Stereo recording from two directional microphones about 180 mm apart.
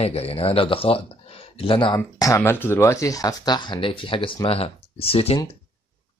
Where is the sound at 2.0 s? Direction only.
15° left (ahead or behind); by 5.4 s 30° left (ahead or behind).